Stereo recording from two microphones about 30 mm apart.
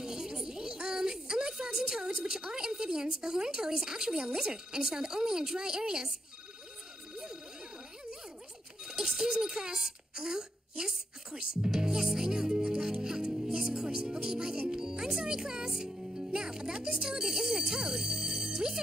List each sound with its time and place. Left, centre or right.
0.0 s a sound: right
4.3 s a woman's voice: right
8.8 s a sound: centre
9.3 s a woman's voice: right
11.7 s music: centre
16.3 s a woman's voice: right